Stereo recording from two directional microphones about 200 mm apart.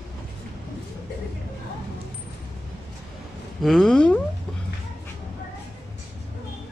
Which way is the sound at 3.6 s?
Centre (ahead or behind).